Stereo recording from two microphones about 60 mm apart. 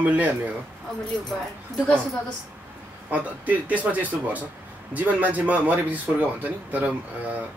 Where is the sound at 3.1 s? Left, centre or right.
Right.